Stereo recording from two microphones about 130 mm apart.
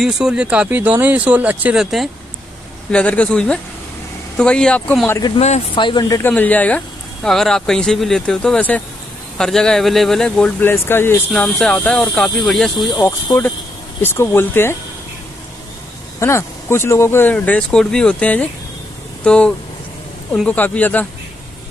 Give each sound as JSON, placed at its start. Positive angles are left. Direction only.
{"t": 0.0, "sound": "speech", "side_deg": -5}
{"t": 2.9, "sound": "speech", "side_deg": 10}
{"t": 5.8, "sound": "speech", "side_deg": 35}
{"t": 6.2, "sound": "speech", "side_deg": 15}
{"t": 10.7, "sound": "speech", "side_deg": 20}
{"t": 12.9, "sound": "speech", "side_deg": 25}
{"t": 16.2, "sound": "speech", "side_deg": 20}